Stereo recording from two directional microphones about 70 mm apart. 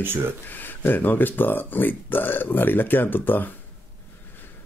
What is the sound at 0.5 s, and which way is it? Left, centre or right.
Speech, left.